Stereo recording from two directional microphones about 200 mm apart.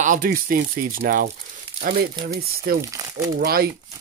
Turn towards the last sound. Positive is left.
turn(degrees=-50)  # may be behind; listen again after turning